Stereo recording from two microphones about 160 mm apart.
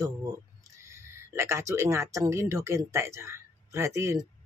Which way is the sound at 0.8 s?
15° right (ahead or behind).